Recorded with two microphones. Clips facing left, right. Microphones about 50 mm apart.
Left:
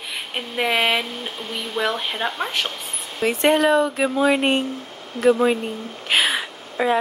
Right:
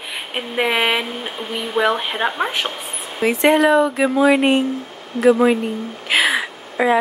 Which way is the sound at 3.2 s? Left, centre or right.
Right.